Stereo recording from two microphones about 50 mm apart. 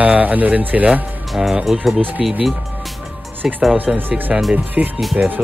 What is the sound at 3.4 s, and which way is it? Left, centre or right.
Speech, right.